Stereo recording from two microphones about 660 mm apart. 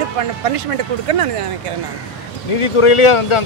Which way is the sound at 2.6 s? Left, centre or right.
Left.